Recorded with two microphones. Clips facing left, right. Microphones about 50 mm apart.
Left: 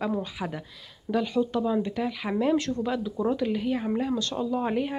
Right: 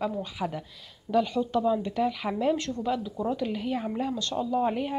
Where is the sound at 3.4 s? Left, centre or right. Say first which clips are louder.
Left 3 dB; centre.